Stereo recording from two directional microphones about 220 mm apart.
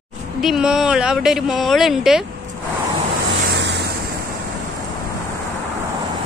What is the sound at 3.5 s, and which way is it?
Vehicle, 50° right (ahead or behind).